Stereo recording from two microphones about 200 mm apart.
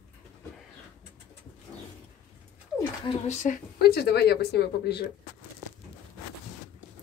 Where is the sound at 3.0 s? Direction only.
30° left (ahead or behind).